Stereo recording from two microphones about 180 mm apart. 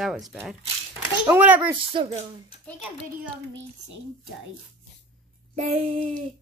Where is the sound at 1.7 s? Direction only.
30° right (ahead or behind).